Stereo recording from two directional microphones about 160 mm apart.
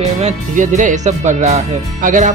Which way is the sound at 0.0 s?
45° right (ahead or behind).